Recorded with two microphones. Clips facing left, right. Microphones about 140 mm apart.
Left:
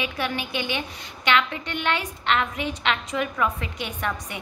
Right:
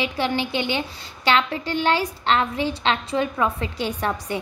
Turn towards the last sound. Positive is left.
turn(degrees=-35)  # may be behind; listen again after turning